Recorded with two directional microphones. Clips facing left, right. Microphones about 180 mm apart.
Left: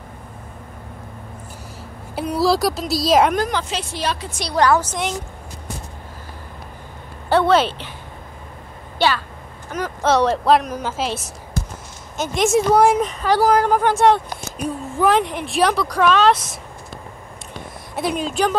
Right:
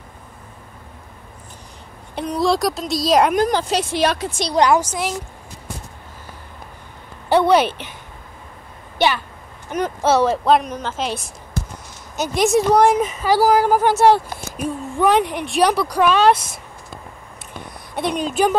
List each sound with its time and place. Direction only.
2.1 s speech: 5° left (ahead or behind)
3.4 s a woman's voice: 35° right (ahead or behind)
4.4 s a woman's voice: 20° right (ahead or behind)
7.2 s a woman's voice: 15° right (ahead or behind)
8.9 s speech: 20° right (ahead or behind)
10.0 s speech: 5° right (ahead or behind)
17.9 s speech: centre (ahead or behind)